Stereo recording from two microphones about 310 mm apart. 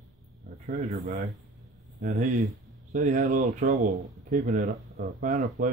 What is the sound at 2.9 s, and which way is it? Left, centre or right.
Speech, right.